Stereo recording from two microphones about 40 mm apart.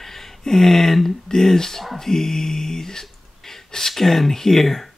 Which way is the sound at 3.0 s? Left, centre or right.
Centre.